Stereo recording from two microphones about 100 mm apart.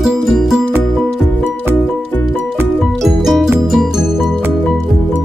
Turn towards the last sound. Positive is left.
turn(degrees=0)  # may be behind; listen again after turning